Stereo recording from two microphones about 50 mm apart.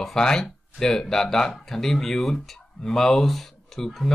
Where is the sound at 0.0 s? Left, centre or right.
Centre.